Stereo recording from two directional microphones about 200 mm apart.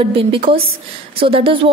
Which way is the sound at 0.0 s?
25° right (ahead or behind).